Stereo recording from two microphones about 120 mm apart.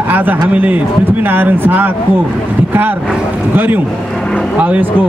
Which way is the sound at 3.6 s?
15° right (ahead or behind).